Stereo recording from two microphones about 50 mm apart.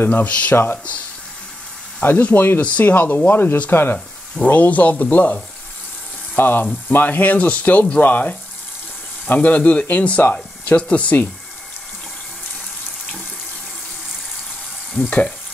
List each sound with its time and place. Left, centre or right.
0.0 s speech: left
0.3 s speech: left
2.0 s speech: left
4.5 s speech: left
15.0 s speech: left